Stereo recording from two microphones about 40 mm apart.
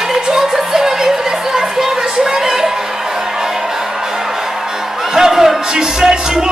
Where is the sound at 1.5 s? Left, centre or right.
Centre.